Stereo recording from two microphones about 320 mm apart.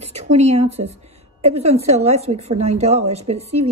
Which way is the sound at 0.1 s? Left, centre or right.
Centre.